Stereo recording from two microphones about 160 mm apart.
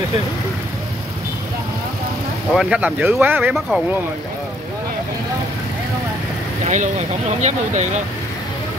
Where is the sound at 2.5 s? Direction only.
5° right (ahead or behind).